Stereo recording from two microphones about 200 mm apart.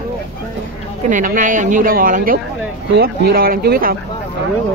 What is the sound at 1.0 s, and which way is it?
Speech, 40° right (ahead or behind).